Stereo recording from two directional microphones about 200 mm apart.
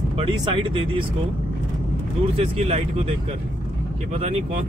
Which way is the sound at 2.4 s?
30° right (ahead or behind).